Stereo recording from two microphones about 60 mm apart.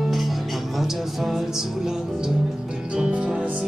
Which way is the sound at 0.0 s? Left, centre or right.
Centre.